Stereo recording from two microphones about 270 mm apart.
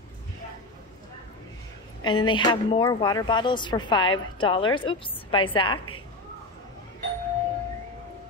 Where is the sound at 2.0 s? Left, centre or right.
Centre.